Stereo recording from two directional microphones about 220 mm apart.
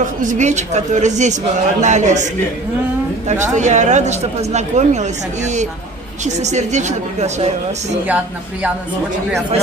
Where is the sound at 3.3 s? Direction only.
35° right (ahead or behind).